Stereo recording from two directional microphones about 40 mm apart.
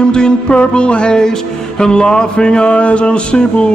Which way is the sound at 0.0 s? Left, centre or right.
Left.